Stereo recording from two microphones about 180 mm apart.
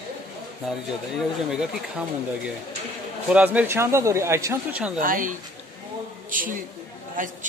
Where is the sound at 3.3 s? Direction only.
10° right (ahead or behind).